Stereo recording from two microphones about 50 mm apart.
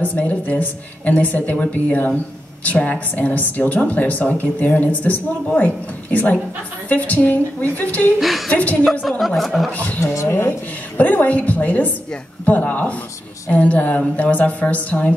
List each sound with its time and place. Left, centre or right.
0.0 s speech: left
8.2 s speech: centre
8.5 s a woman's voice: left
9.3 s speech: centre
10.1 s speech: left
11.0 s speech: left